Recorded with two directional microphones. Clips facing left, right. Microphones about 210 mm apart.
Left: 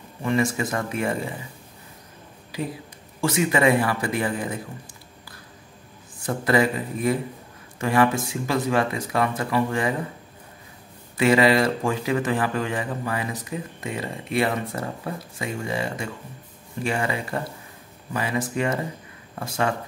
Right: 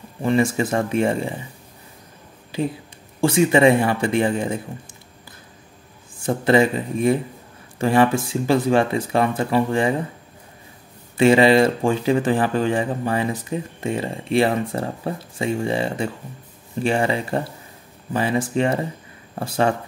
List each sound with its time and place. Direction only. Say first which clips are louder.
0.2 s speech: right 4 dB; 30° right (ahead or behind)
2.5 s speech: right 6 dB; 25° right (ahead or behind)
6.2 s speech: right 4 dB; 25° right (ahead or behind)
11.1 s speech: right 4 dB; 25° right (ahead or behind)